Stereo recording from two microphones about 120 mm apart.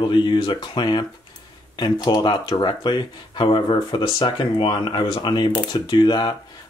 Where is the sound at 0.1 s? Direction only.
40° left (ahead or behind).